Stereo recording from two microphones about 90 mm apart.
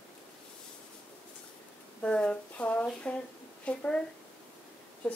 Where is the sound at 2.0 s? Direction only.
10° left (ahead or behind).